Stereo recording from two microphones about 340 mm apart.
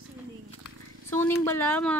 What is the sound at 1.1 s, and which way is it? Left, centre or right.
Speech, centre.